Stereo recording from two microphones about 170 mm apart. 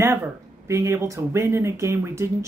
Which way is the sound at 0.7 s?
20° right (ahead or behind).